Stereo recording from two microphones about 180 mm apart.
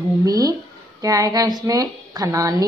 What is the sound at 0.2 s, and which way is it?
A woman's voice, 20° right (ahead or behind).